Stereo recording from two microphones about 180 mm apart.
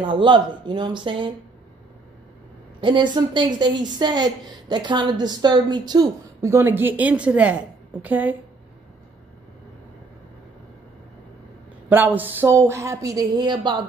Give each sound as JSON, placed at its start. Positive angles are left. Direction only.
{"t": 0.0, "sound": "a woman's voice", "side_deg": -25}
{"t": 2.8, "sound": "a woman's voice", "side_deg": -25}
{"t": 11.9, "sound": "speech", "side_deg": -10}